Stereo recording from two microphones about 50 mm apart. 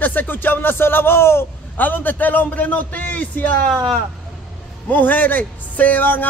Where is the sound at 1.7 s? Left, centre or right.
Left.